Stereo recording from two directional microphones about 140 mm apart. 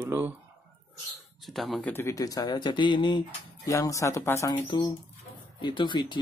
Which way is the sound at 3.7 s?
20° left (ahead or behind).